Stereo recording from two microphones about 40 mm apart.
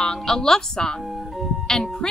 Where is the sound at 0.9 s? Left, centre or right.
Centre.